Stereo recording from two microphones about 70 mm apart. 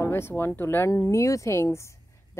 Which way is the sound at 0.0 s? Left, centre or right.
Left.